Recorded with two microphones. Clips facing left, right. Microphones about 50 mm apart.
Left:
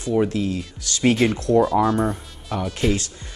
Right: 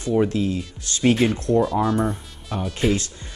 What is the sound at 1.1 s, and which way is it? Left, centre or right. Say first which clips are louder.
Speech: left 3 dB; centre.